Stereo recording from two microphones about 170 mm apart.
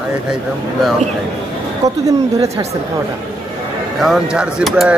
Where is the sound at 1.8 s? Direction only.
20° right (ahead or behind).